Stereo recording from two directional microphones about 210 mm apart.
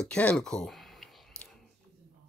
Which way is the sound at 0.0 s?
5° left (ahead or behind).